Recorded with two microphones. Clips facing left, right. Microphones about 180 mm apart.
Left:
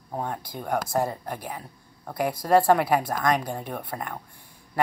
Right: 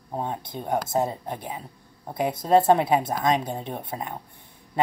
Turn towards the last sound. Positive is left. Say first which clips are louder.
# right 1 dB
turn(degrees=-20)  # may be behind; listen again after turning